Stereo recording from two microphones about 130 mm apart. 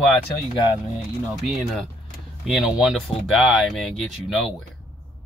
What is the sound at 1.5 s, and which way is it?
Speech, centre (ahead or behind).